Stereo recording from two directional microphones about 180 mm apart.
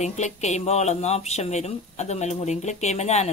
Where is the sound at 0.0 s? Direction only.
40° left (ahead or behind).